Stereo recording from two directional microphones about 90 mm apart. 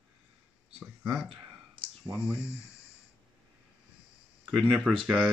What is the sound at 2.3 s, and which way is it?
Speech, 30° left (ahead or behind).